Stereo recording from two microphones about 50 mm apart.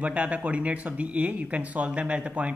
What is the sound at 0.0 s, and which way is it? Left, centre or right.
Speech, right.